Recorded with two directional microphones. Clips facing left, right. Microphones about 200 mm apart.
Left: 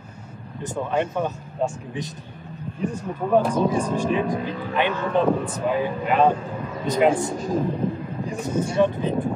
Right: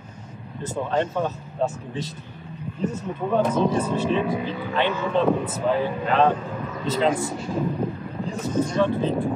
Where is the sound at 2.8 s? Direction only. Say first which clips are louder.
Even; 10° left (ahead or behind).